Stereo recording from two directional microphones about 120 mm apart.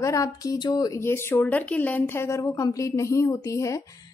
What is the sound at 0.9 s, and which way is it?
A woman's voice, 20° left (ahead or behind).